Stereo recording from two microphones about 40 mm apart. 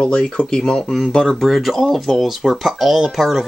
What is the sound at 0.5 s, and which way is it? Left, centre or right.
Speech, centre.